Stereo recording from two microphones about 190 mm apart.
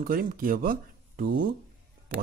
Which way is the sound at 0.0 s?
50° right (ahead or behind).